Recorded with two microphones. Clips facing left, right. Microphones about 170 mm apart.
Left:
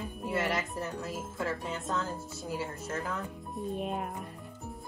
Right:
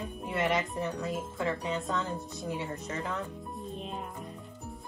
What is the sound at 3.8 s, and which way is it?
Music, 60° left (ahead or behind).